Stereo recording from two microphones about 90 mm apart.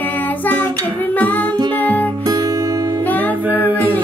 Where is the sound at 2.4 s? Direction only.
45° right (ahead or behind).